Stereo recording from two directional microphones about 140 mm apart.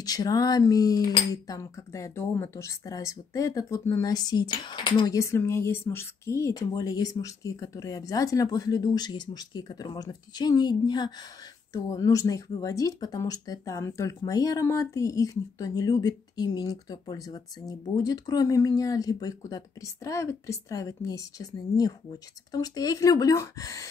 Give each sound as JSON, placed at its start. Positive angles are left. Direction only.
{"t": 0.0, "sound": "speech", "side_deg": 25}